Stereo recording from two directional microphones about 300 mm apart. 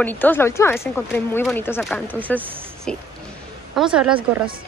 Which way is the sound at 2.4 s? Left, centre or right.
Centre.